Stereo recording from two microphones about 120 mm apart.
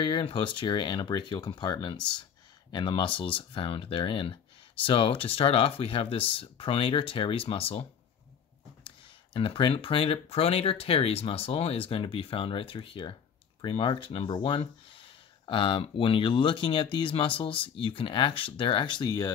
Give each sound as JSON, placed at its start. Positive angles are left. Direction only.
{"t": 0.0, "sound": "speech", "side_deg": 45}
{"t": 8.8, "sound": "speech", "side_deg": 45}